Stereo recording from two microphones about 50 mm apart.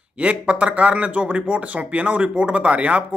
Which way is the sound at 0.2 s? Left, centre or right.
Right.